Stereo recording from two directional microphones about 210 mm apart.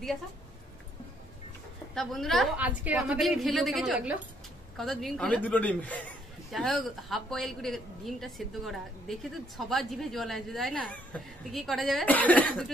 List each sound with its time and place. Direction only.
2.0 s a woman's voice: centre (ahead or behind)